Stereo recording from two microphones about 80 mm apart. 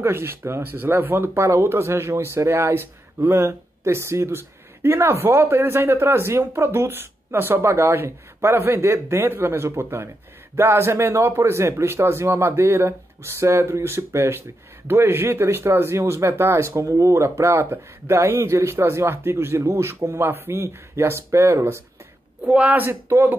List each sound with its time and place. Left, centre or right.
0.0 s speech: right
22.4 s speech: centre
22.8 s speech: right